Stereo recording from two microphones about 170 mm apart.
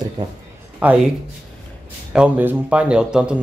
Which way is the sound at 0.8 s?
10° right (ahead or behind).